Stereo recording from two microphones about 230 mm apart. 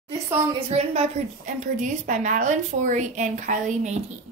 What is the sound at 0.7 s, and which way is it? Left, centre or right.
A woman's voice, right.